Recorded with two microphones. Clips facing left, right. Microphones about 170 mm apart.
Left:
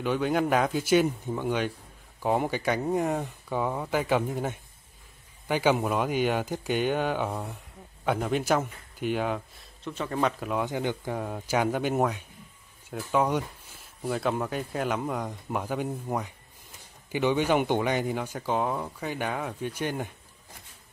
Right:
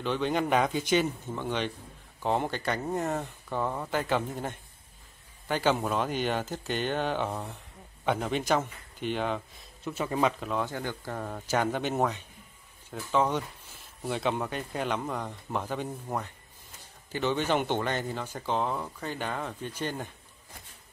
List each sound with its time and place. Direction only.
0.0 s speech: 10° left (ahead or behind)
9.8 s speech: 5° right (ahead or behind)
10.5 s speech: 15° left (ahead or behind)